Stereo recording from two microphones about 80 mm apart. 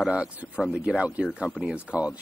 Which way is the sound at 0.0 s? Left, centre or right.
Centre.